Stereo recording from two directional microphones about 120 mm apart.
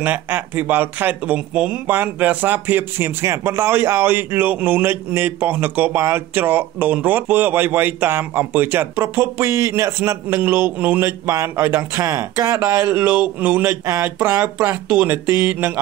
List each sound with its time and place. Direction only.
0.0 s speech: 15° right (ahead or behind)